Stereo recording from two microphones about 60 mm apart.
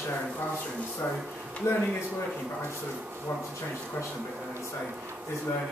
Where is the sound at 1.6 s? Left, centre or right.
Left.